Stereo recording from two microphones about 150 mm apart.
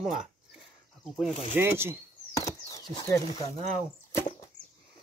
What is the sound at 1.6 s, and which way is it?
Speech, 15° right (ahead or behind).